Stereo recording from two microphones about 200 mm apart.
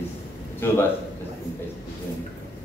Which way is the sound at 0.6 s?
10° left (ahead or behind).